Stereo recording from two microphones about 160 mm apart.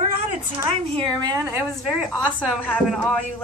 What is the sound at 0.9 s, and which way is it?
Speech, 25° right (ahead or behind).